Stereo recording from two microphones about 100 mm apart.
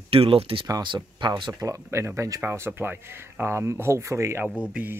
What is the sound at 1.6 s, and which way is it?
Speech, 30° right (ahead or behind).